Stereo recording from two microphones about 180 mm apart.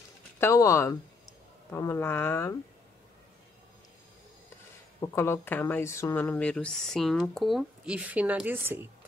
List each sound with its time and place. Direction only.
0.4 s speech: 15° left (ahead or behind)
5.0 s speech: 15° left (ahead or behind); by 8.8 s 10° right (ahead or behind)